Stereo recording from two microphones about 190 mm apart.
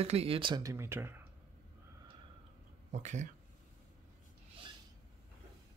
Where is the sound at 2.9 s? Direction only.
40° right (ahead or behind).